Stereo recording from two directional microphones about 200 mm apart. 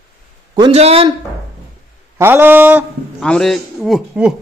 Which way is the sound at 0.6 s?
30° right (ahead or behind).